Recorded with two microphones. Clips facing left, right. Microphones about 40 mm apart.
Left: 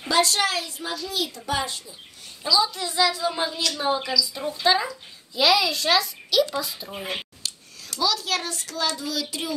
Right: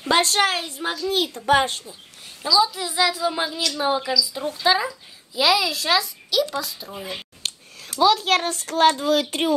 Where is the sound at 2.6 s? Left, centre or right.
Centre.